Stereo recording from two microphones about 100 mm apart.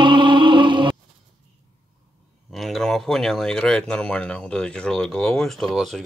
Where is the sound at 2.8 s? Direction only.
5° left (ahead or behind).